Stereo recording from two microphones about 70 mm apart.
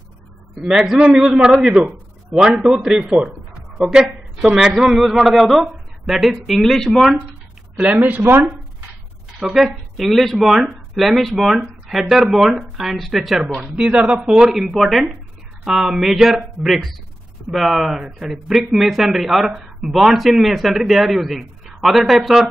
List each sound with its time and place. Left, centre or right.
0.6 s speech: centre
2.4 s speech: centre
2.8 s speech: centre
7.7 s speech: centre
8.0 s speech: right
9.4 s speech: centre
13.6 s speech: centre